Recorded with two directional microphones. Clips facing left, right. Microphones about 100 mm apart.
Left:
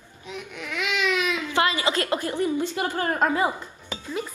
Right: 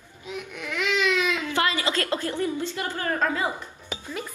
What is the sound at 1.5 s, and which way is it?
A woman's voice, 20° left (ahead or behind).